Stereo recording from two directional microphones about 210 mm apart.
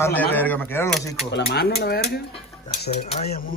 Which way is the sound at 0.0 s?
10° left (ahead or behind).